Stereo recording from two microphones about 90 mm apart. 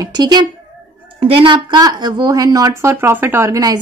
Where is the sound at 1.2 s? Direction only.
75° right (ahead or behind).